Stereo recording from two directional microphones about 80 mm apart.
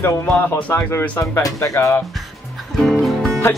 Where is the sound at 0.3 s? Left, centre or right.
Left.